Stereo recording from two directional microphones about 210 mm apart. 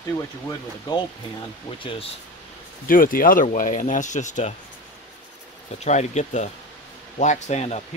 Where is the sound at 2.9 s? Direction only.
40° left (ahead or behind).